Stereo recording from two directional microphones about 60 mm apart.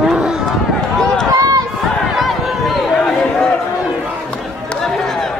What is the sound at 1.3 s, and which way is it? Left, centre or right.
Run, right.